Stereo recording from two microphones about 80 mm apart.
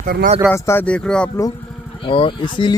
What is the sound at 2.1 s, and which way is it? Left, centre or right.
Speech, left.